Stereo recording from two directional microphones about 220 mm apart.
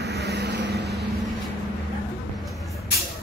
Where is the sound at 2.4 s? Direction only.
Centre (ahead or behind).